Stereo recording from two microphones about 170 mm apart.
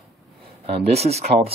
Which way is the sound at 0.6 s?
40° right (ahead or behind).